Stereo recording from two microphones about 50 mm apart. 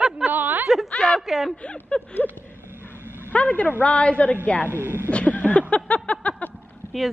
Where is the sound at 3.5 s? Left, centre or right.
Left.